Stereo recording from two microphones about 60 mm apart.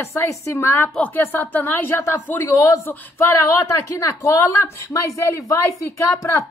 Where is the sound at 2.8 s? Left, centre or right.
Left.